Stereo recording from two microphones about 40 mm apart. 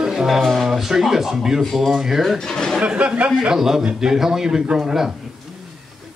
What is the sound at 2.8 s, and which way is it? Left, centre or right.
Speech, right.